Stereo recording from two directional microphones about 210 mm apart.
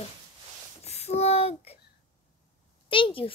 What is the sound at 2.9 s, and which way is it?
Speech, 25° left (ahead or behind).